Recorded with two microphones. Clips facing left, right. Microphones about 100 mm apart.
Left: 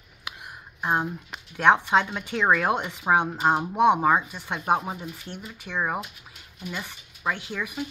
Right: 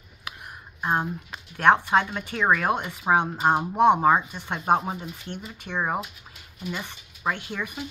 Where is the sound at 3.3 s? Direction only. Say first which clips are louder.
Right 1 dB; 10° right (ahead or behind).